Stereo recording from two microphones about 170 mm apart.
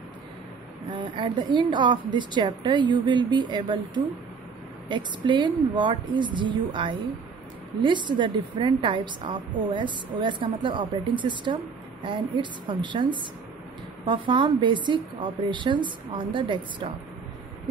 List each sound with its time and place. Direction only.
0.8 s a woman's voice: 30° right (ahead or behind)
4.8 s a woman's voice: 30° right (ahead or behind)